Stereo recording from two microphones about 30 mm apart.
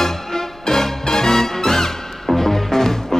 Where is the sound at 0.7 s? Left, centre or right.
Centre.